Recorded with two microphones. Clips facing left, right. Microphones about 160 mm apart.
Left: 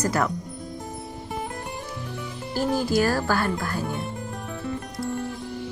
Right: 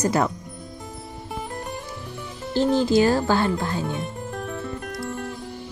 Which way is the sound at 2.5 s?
25° right (ahead or behind).